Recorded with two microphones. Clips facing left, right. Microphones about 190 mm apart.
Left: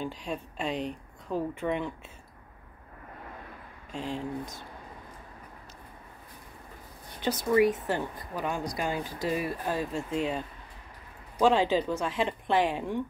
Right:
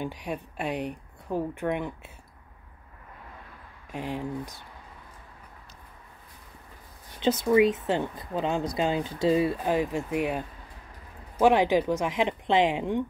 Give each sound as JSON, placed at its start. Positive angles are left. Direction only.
{"t": 0.0, "sound": "speech", "side_deg": -15}
{"t": 3.9, "sound": "speech", "side_deg": -15}
{"t": 7.2, "sound": "speech", "side_deg": -25}